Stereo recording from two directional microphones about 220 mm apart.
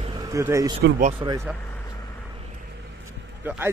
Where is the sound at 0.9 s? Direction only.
30° right (ahead or behind).